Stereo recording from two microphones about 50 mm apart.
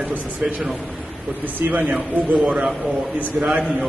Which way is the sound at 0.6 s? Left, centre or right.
Centre.